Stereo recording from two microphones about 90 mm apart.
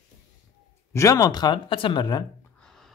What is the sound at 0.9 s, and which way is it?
Speech, 35° left (ahead or behind).